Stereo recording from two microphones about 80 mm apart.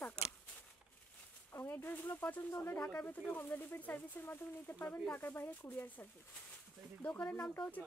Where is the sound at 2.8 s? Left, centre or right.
Centre.